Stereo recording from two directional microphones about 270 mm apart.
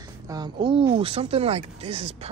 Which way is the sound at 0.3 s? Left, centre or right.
Centre.